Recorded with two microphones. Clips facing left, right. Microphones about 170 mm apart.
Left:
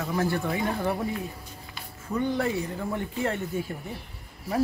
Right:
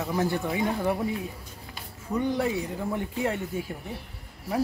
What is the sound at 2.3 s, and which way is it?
Speech, 15° right (ahead or behind).